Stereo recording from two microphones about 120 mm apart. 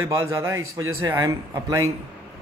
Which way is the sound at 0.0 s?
20° right (ahead or behind).